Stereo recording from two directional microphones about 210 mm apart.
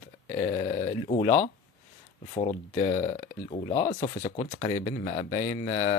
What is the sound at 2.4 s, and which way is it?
Speech, 30° left (ahead or behind).